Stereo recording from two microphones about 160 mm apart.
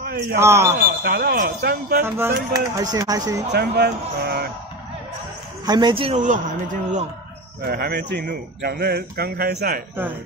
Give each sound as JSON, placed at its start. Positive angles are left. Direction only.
{"t": 0.0, "sound": "a man's voice", "side_deg": -75}
{"t": 0.4, "sound": "a man's voice", "side_deg": -15}
{"t": 1.0, "sound": "a man's voice", "side_deg": -75}
{"t": 2.0, "sound": "speech", "side_deg": -15}
{"t": 3.5, "sound": "speech", "side_deg": -90}
{"t": 5.7, "sound": "speech", "side_deg": -30}
{"t": 6.1, "sound": "a man's voice", "side_deg": -55}
{"t": 7.6, "sound": "a man's voice", "side_deg": -75}